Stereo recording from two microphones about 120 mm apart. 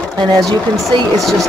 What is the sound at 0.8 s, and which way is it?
Speech, centre (ahead or behind).